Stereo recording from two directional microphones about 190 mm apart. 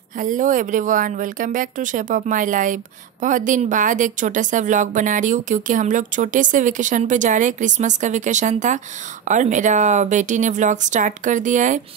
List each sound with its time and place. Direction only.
0.2 s speech: 45° right (ahead or behind)